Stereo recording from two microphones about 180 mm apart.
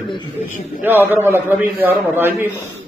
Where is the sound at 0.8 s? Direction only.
10° right (ahead or behind).